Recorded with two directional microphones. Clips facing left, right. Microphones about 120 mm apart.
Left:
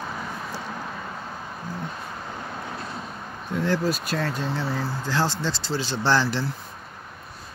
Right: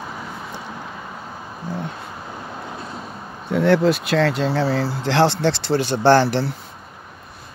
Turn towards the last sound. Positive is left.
turn(degrees=-60)  # may be behind; listen again after turning